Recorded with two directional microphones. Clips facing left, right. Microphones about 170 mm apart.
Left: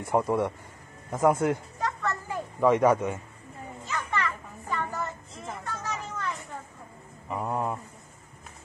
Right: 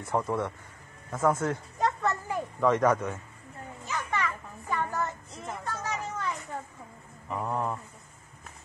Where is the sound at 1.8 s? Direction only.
20° right (ahead or behind).